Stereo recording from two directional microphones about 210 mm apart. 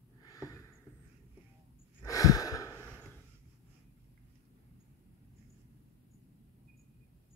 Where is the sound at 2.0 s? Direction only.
15° left (ahead or behind).